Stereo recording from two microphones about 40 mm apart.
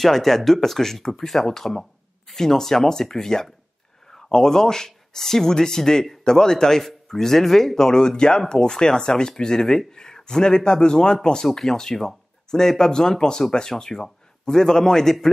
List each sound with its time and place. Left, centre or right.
0.0 s speech: centre